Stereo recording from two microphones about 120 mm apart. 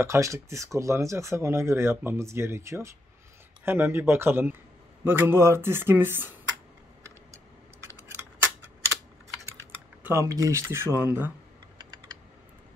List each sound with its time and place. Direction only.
0.0 s speech: 25° right (ahead or behind)
10.0 s speech: 25° right (ahead or behind)